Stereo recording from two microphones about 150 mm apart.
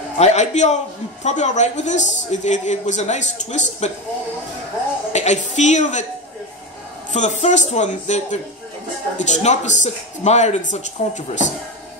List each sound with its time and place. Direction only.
0.2 s a man's voice: 50° left (ahead or behind)
5.1 s a man's voice: 50° left (ahead or behind)
7.1 s a man's voice: 50° left (ahead or behind)